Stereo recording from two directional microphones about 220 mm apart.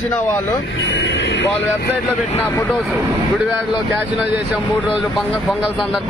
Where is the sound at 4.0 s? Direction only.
5° right (ahead or behind).